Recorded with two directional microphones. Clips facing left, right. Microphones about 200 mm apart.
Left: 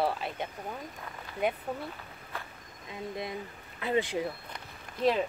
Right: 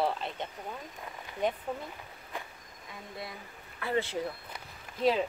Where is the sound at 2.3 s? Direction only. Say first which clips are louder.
Right 1 dB; 15° right (ahead or behind).